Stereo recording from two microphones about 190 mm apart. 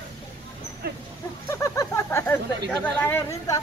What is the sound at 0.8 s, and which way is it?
Dog, 55° right (ahead or behind).